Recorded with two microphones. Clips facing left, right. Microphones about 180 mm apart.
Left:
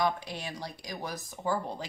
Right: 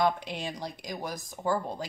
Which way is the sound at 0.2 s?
20° right (ahead or behind).